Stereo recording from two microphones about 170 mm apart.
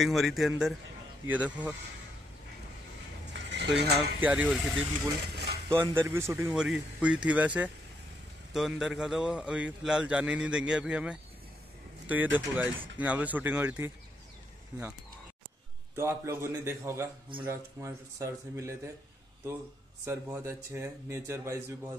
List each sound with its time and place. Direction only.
0.0 s a man's voice: centre (ahead or behind)
3.3 s a sound: 90° right
4.2 s speech: 10° right (ahead or behind)
5.3 s a sound: 70° right (ahead or behind)
5.7 s speech: 15° right (ahead or behind)
6.5 s a man's voice: 5° right (ahead or behind)
16.0 s speech: 15° right (ahead or behind)
20.1 s speech: 15° right (ahead or behind)